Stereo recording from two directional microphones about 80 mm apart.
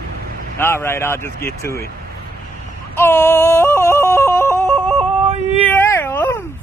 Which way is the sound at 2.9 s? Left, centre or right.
Left.